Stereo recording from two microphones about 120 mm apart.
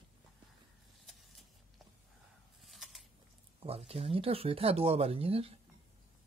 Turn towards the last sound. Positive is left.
turn(degrees=-55)  # may be behind; listen again after turning